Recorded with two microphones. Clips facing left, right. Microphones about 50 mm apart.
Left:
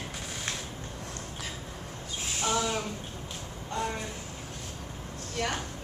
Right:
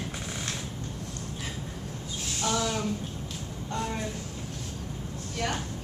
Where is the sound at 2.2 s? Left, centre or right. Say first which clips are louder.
Even; centre.